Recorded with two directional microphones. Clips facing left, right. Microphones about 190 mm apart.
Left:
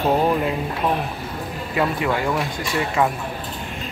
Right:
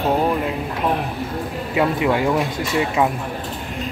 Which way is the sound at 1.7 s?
15° right (ahead or behind).